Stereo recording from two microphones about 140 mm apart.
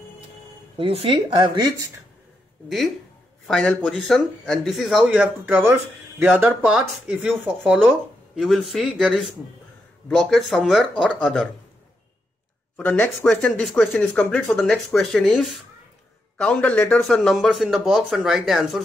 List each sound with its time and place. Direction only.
0.7 s speech: 40° right (ahead or behind)
3.4 s speech: 5° left (ahead or behind)
12.7 s speech: 10° left (ahead or behind)